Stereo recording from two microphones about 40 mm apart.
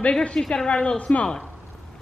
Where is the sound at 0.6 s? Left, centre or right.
Left.